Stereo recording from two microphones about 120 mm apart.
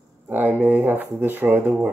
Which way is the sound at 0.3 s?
15° right (ahead or behind).